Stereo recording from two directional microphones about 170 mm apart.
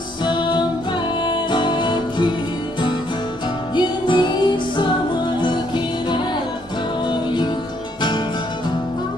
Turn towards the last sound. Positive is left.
turn(degrees=25)  # may be behind; listen again after turning